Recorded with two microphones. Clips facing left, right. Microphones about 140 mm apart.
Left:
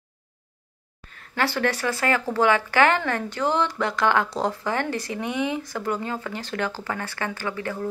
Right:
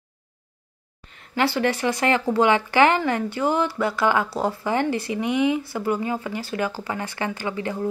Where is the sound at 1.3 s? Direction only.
15° right (ahead or behind).